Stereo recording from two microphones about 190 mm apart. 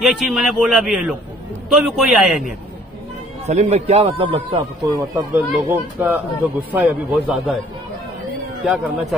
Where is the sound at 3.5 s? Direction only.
35° right (ahead or behind).